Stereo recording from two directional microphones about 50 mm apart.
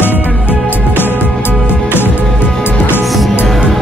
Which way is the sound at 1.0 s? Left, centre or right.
Left.